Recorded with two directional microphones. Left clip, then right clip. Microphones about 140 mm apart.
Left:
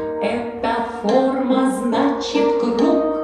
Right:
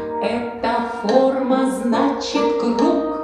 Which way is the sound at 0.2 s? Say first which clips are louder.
Right 1 dB; 20° left (ahead or behind).